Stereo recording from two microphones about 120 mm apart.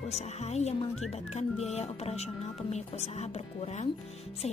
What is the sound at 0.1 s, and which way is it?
A woman's voice, 65° left (ahead or behind).